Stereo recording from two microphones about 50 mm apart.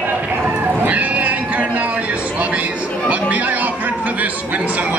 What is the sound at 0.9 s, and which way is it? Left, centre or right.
Cat, right.